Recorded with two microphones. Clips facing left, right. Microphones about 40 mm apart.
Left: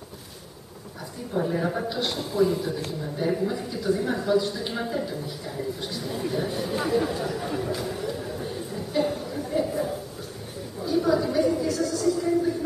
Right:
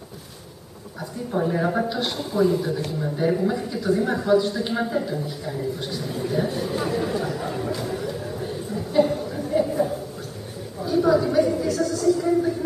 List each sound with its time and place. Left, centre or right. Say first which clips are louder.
1.3 s a woman's voice: right 3 dB; centre
1.9 s a woman's voice: right 2 dB; centre
10.8 s a sound: right 4 dB; centre